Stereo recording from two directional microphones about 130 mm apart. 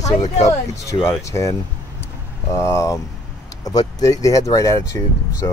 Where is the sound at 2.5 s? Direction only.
20° left (ahead or behind).